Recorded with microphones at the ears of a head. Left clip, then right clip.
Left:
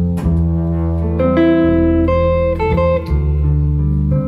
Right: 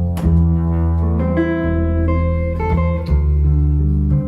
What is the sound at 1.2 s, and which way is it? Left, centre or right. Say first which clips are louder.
Music: left 7 dB; left.